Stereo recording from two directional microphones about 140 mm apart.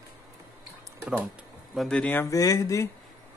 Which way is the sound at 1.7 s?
5° left (ahead or behind).